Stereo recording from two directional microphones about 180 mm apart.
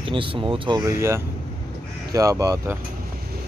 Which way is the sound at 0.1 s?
30° right (ahead or behind).